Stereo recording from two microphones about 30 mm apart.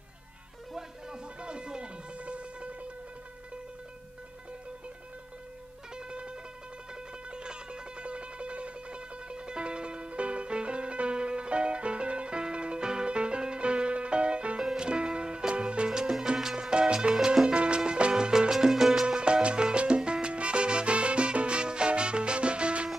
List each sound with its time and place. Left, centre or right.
0.7 s music: right
5.9 s music: right
15.9 s music: right
18.1 s salsa music: right
18.5 s music: centre
19.0 s music: right
20.0 s salsa music: right